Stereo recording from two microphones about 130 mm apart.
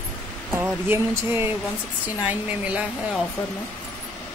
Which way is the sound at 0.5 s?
15° right (ahead or behind).